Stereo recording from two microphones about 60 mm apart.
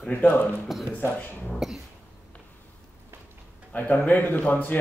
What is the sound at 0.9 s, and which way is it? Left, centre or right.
Speech, left.